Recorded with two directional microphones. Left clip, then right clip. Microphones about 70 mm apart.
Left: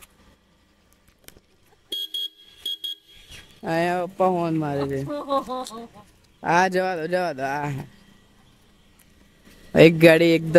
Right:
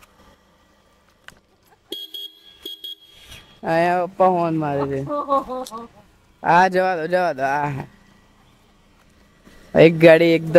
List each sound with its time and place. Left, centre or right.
1.9 s a sound: left
3.6 s speech: centre
5.1 s speech: left
6.4 s speech: centre
9.6 s a man's voice: centre